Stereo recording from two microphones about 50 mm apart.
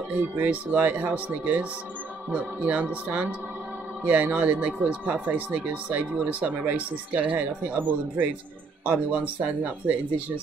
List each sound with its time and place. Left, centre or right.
0.4 s speech: right